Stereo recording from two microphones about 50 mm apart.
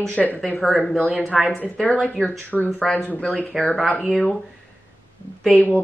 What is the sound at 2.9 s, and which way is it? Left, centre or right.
Speech, left.